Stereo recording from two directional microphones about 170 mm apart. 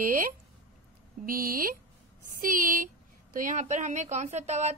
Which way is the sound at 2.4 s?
55° right (ahead or behind).